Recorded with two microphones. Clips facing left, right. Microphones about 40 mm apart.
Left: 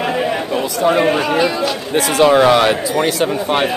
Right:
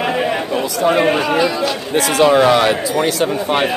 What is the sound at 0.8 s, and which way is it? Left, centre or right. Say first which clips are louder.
Speech: even; centre.